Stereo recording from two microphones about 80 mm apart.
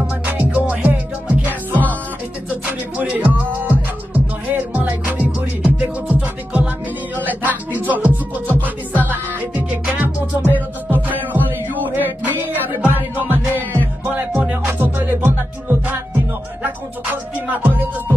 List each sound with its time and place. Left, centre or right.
0.0 s music: right
8.5 s music: left
9.0 s music: right
13.6 s music: left
14.1 s music: centre